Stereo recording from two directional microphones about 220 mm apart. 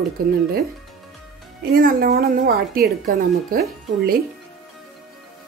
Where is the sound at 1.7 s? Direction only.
40° right (ahead or behind).